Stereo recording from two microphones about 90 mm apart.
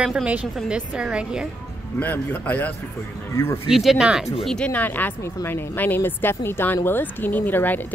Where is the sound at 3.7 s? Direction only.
Centre (ahead or behind).